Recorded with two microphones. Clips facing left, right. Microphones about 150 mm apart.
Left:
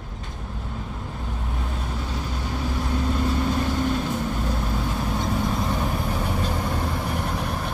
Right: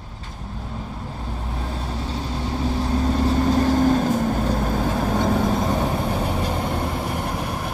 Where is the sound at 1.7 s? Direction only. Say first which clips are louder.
Right 4 dB; 30° right (ahead or behind).